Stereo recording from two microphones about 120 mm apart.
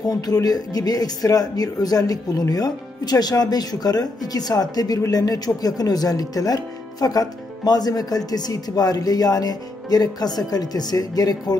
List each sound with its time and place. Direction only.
0.1 s speech: 30° left (ahead or behind)